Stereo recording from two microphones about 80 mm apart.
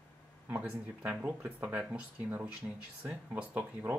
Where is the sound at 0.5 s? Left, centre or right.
Right.